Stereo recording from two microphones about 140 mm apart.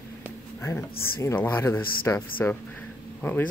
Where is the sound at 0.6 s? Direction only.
20° left (ahead or behind).